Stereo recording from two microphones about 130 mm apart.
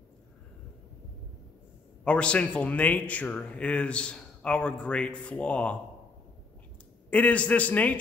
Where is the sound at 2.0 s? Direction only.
10° left (ahead or behind).